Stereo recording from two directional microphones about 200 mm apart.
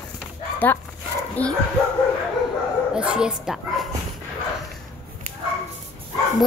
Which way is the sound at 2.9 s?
5° right (ahead or behind).